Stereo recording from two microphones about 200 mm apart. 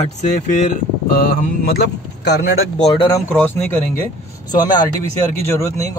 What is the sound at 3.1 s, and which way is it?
Speech, 10° left (ahead or behind).